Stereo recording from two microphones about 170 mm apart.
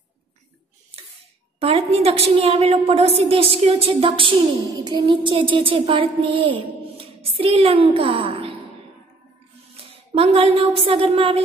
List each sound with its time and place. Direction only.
1.6 s a woman's voice: 35° right (ahead or behind)
9.8 s speech: 35° right (ahead or behind)